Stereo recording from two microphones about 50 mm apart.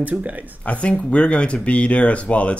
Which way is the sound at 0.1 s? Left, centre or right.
Right.